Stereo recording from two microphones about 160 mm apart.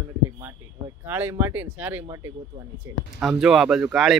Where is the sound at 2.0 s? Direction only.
20° right (ahead or behind).